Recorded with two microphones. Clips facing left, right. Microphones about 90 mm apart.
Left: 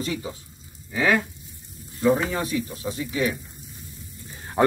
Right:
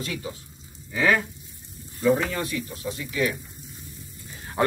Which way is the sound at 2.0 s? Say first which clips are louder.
Left 1 dB; 20° left (ahead or behind).